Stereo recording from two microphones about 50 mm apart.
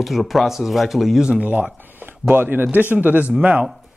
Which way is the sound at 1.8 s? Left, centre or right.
Right.